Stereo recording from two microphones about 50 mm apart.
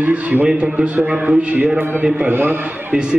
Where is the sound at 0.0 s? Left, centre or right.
Right.